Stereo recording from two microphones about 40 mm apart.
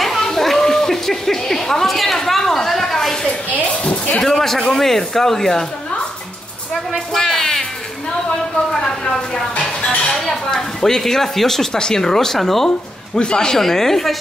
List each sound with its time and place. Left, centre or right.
0.0 s a sound: centre
3.5 s speech: left
4.4 s speech: centre
7.2 s music: centre
8.7 s speech: centre
10.2 s speech: centre
12.6 s speech: left
13.6 s speech: centre